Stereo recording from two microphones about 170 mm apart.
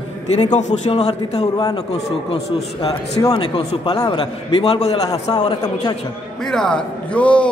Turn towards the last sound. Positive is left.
turn(degrees=5)  # may be behind; listen again after turning